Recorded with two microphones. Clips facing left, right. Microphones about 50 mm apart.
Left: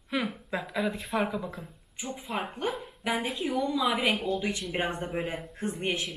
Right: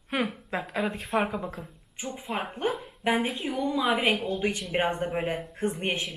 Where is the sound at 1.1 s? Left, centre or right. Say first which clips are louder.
Right 4 dB; right.